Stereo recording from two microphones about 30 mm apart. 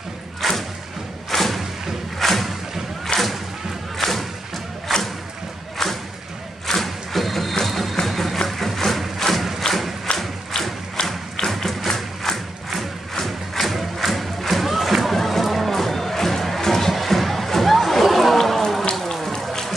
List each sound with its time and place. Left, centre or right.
0.4 s thump: centre
3.1 s whip: left
4.0 s thump: centre
4.9 s music: centre
6.7 s a sound: centre
7.6 s music: centre
9.3 s thump: centre
9.6 s crowd: centre
10.1 s thump: left
11.5 s music: centre
12.2 s crowd: centre
13.2 s music: centre